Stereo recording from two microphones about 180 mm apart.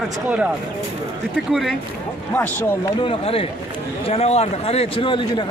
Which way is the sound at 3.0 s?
30° left (ahead or behind).